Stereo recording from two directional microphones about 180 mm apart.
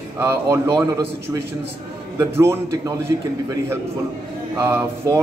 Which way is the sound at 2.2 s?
15° right (ahead or behind).